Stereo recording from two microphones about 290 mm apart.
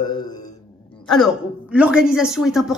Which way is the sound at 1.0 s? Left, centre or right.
Centre.